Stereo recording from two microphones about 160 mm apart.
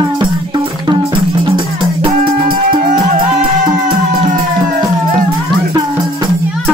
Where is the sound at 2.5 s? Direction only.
55° right (ahead or behind).